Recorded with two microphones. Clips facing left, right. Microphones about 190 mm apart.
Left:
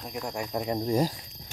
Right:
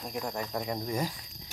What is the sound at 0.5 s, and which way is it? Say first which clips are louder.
Cricket: left 8 dB; 20° left (ahead or behind).